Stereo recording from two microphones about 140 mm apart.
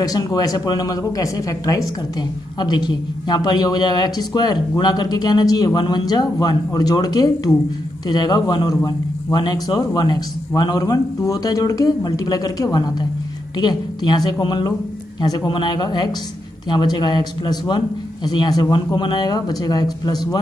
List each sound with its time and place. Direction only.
0.0 s a man's voice: 25° left (ahead or behind)